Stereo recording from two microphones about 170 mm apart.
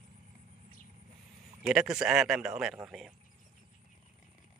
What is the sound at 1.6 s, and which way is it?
Speech, 5° right (ahead or behind).